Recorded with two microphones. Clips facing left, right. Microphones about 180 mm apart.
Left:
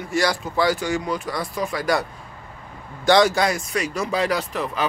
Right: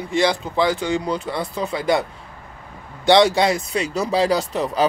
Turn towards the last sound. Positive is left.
turn(degrees=-35)  # may be behind; listen again after turning